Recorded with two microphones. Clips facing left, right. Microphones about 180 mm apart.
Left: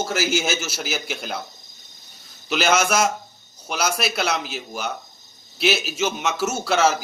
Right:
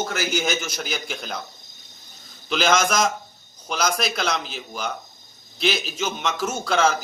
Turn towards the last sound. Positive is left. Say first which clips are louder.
# left 1 dB
turn(degrees=5)  # may be behind; listen again after turning